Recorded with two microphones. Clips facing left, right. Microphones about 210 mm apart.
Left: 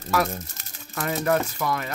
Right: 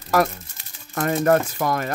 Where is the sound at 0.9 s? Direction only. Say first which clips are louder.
Right 5 dB; 45° right (ahead or behind).